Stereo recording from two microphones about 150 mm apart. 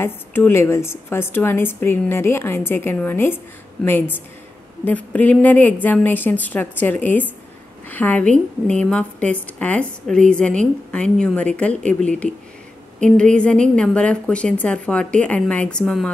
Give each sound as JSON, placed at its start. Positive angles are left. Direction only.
{"t": 0.0, "sound": "a woman's voice", "side_deg": 15}